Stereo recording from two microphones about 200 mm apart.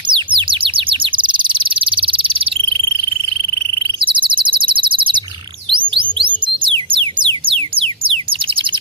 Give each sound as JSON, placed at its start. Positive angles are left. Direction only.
{"t": 0.1, "sound": "bird", "side_deg": -25}
{"t": 4.0, "sound": "bird", "side_deg": -25}
{"t": 5.7, "sound": "music", "side_deg": -25}